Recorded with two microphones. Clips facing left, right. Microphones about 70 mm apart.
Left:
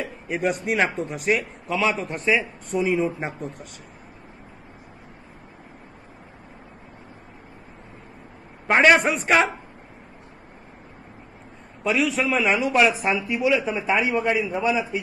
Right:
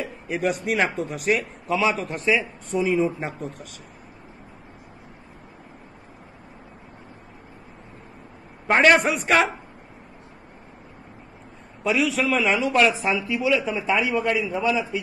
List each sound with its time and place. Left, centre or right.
0.0 s a man's voice: centre
8.6 s a man's voice: centre
11.8 s a man's voice: centre
13.1 s a man's voice: centre